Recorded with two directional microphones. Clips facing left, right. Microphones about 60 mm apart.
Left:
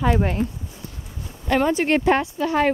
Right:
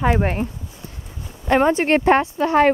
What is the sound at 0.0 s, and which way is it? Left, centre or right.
Speech, right.